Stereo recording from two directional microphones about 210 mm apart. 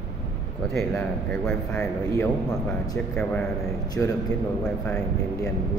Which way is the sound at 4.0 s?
10° left (ahead or behind).